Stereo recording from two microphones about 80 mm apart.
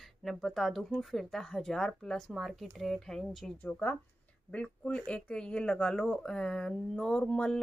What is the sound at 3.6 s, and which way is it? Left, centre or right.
Speech, left.